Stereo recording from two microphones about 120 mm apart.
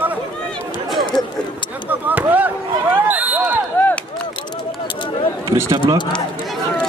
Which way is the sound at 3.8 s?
15° left (ahead or behind).